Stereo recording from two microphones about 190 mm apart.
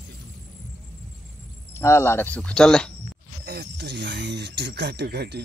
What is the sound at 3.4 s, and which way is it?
Speech, 60° right (ahead or behind).